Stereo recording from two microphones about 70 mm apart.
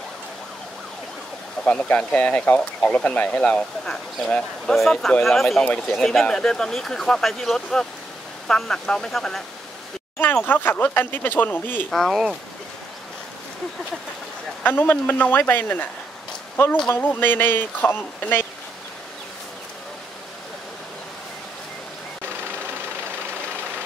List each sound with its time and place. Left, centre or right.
1.7 s speech: left
10.2 s speech: left
11.9 s speech: centre
14.6 s speech: left
16.9 s speech: left